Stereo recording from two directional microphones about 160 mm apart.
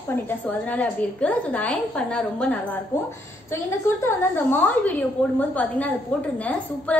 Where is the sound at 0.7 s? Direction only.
10° left (ahead or behind).